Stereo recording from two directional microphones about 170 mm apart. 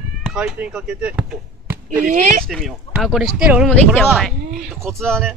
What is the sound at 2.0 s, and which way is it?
Speech, 50° right (ahead or behind).